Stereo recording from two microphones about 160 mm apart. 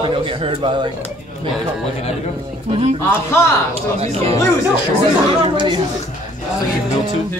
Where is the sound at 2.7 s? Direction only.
40° right (ahead or behind).